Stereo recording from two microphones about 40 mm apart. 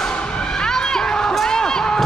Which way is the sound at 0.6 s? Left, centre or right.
Centre.